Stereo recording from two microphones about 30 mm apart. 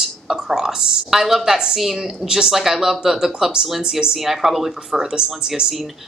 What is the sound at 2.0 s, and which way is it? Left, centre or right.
A woman's voice, right.